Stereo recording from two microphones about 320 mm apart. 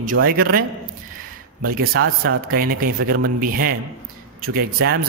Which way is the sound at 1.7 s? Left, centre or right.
Right.